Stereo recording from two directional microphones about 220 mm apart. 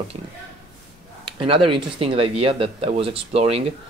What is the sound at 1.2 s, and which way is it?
Speech, 25° right (ahead or behind).